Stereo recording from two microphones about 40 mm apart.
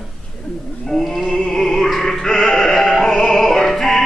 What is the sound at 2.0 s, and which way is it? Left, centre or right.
Music, centre.